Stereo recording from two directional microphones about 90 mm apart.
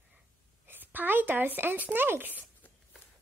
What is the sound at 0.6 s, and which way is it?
Speech, 20° right (ahead or behind).